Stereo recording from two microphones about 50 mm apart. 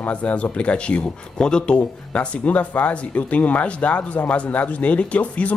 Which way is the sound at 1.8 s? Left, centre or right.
Left.